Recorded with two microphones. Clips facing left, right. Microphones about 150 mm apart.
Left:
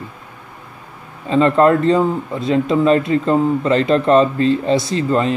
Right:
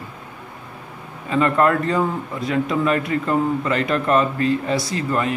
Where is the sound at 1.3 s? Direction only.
25° left (ahead or behind).